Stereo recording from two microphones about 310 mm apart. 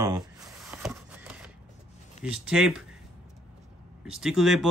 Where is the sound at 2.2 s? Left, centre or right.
Centre.